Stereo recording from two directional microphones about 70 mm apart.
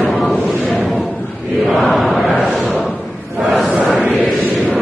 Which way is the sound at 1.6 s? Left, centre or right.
Centre.